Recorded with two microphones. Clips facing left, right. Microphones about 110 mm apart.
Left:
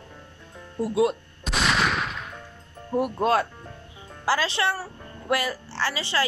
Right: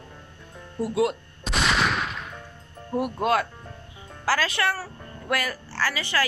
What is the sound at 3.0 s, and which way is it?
A woman's voice, 30° left (ahead or behind).